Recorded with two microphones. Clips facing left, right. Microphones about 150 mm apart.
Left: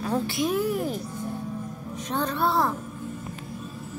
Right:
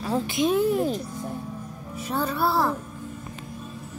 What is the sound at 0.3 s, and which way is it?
Speech, 25° right (ahead or behind).